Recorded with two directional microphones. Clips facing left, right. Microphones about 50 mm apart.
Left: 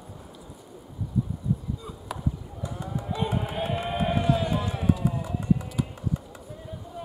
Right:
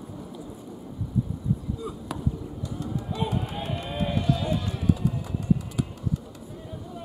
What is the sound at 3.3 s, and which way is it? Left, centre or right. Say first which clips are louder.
Run: left 2 dB; left.